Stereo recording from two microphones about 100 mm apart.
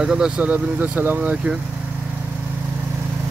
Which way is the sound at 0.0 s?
5° right (ahead or behind).